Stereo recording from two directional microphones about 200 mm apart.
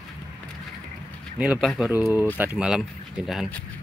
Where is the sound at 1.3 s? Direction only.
Centre (ahead or behind).